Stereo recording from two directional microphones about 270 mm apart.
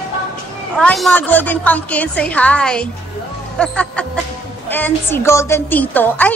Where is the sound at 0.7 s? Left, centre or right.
Centre.